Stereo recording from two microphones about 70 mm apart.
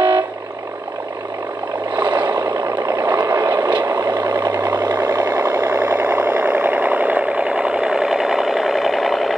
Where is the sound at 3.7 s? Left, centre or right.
Right.